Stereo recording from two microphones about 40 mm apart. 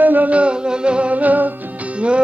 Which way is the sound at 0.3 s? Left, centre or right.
Right.